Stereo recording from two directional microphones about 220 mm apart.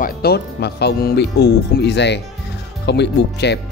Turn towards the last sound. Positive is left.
turn(degrees=50)  # may be behind; listen again after turning